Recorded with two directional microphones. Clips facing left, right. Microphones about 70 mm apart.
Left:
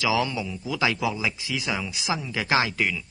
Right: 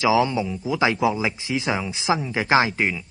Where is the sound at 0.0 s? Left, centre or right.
Right.